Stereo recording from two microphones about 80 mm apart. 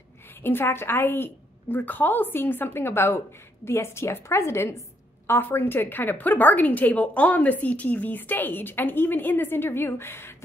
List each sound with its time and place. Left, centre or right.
0.4 s a woman's voice: left